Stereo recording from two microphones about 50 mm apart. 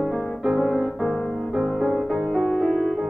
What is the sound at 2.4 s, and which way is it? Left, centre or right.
Music, centre.